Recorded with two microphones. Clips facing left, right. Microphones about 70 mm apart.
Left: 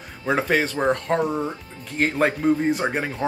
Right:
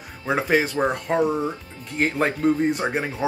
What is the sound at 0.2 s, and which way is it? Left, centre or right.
Speech, centre.